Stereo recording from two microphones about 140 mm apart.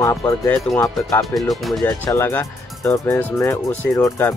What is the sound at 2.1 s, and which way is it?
Speech, 15° left (ahead or behind).